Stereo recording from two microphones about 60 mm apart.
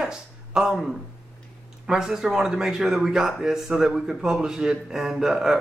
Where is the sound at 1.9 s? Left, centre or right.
Centre.